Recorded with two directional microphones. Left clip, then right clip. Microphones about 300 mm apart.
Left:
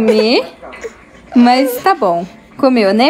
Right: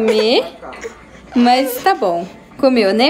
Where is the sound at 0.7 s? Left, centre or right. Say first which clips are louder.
Left 2 dB; centre.